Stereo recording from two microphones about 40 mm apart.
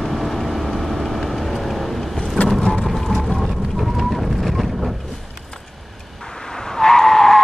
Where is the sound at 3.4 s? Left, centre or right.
Centre.